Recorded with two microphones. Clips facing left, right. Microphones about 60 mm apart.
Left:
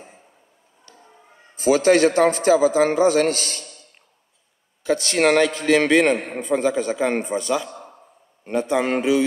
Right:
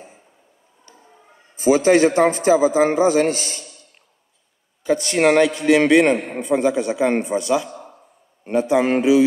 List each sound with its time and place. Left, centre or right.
1.6 s a man's voice: centre
4.8 s a man's voice: centre